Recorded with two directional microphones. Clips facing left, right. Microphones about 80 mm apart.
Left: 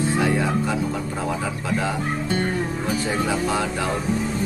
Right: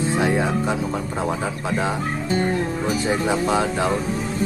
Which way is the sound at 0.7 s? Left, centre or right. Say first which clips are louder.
Right 1 dB; right.